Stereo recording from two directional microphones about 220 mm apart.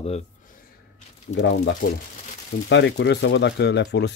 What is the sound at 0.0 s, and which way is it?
Speech, 30° left (ahead or behind).